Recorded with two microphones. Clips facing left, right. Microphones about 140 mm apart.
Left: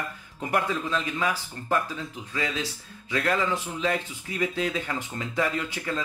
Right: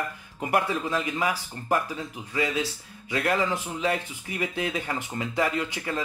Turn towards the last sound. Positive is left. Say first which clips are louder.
# right 1 dB
turn(degrees=-20)  # may be behind; listen again after turning